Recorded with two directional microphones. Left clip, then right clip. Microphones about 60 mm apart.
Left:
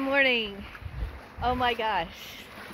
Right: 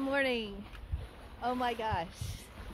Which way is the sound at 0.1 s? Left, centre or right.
Right.